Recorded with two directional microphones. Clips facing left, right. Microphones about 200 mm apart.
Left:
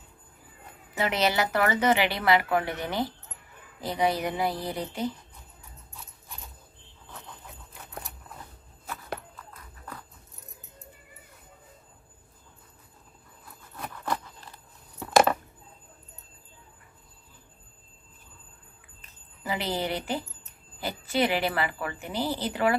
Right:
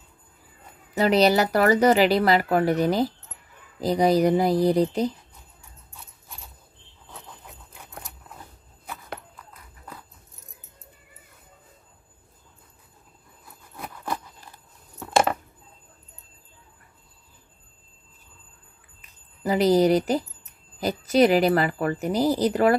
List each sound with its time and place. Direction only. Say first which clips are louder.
0.9 s speech: right 7 dB; 35° right (ahead or behind)
13.7 s a sound: even; 10° right (ahead or behind)
19.4 s speech: right 12 dB; 40° right (ahead or behind)